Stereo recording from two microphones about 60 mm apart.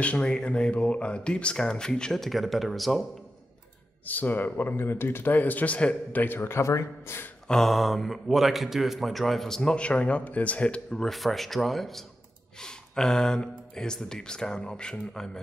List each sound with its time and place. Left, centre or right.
0.0 s speech: centre
4.0 s a man's voice: left
6.2 s speech: left
7.4 s a man's voice: centre
9.6 s speech: centre
11.1 s a man's voice: centre